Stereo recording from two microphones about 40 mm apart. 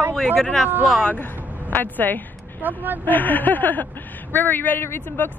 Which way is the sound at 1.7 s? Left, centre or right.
Left.